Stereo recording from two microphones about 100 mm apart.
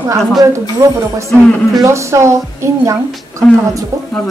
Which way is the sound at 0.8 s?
35° right (ahead or behind).